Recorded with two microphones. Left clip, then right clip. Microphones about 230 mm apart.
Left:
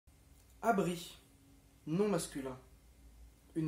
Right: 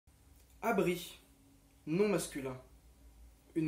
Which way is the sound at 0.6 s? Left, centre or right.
Left.